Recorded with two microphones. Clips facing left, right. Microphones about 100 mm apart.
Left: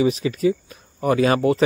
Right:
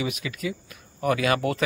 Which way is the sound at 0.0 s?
35° left (ahead or behind).